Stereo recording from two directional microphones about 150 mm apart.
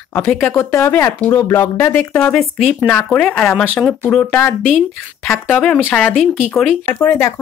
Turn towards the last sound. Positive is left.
turn(degrees=15)  # may be behind; listen again after turning